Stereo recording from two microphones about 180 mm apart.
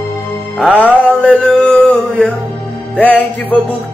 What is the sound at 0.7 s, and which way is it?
Male singing, 10° left (ahead or behind).